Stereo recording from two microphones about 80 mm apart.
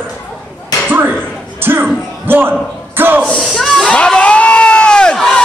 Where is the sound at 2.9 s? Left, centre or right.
Right.